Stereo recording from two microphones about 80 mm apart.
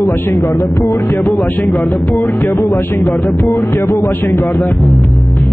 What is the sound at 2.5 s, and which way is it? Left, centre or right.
Speech, left.